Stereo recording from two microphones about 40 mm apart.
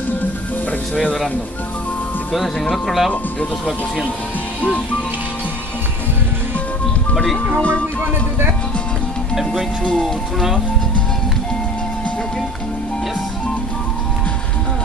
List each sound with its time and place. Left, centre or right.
2.7 s speech: centre
7.2 s speech: centre
7.5 s speech: left
9.3 s speech: centre